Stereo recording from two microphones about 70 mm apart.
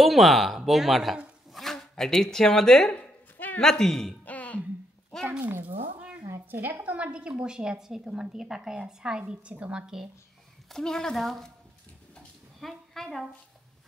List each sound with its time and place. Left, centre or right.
0.0 s speech: centre
3.0 s a sound: left
3.6 s a woman's voice: centre
4.2 s music: left
5.4 s a sound: right
6.5 s a woman's voice: right; by 10.0 s centre
10.7 s a woman's voice: centre
12.5 s a woman's voice: centre